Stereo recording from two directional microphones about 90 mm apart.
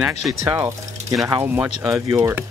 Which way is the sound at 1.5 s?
30° right (ahead or behind).